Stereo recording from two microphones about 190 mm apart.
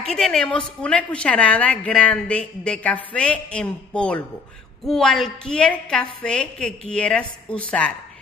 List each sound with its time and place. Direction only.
0.0 s a woman's voice: 5° left (ahead or behind)